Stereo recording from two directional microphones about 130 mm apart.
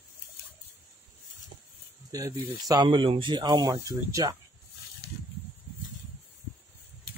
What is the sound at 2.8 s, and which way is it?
Speech, 40° right (ahead or behind).